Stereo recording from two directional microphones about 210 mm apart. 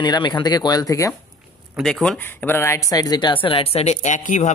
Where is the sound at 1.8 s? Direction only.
Centre (ahead or behind).